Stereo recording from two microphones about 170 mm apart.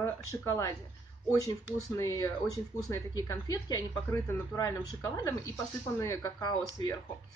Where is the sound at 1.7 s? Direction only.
20° left (ahead or behind).